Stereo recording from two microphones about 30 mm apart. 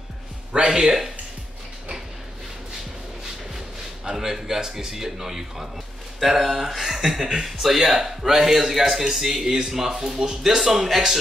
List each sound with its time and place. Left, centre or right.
0.5 s speech: right
4.0 s speech: centre
7.2 s speech: right
7.4 s speech: centre